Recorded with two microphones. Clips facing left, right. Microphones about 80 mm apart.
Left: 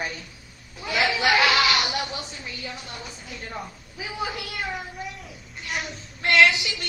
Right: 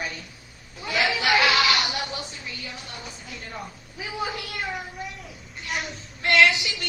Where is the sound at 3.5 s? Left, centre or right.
Centre.